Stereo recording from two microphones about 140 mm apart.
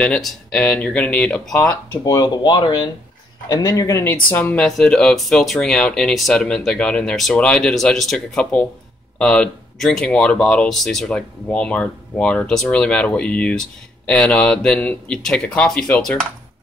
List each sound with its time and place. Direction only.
0.0 s speech: 5° left (ahead or behind)
2.0 s speech: 30° left (ahead or behind); by 16.3 s 5° left (ahead or behind)